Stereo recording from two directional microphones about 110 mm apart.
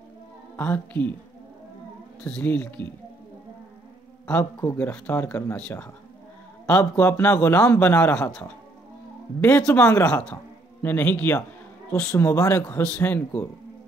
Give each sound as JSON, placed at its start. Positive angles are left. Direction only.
{"t": 0.6, "sound": "a man's voice", "side_deg": 15}
{"t": 2.2, "sound": "a man's voice", "side_deg": 10}
{"t": 4.3, "sound": "a man's voice", "side_deg": 15}
{"t": 9.6, "sound": "a man's voice", "side_deg": 10}
{"t": 9.9, "sound": "a man's voice", "side_deg": 20}